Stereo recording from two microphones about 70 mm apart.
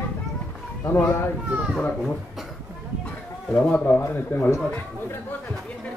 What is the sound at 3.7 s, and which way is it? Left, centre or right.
Speech, left.